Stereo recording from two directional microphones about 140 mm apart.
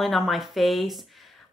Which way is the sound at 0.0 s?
Centre (ahead or behind).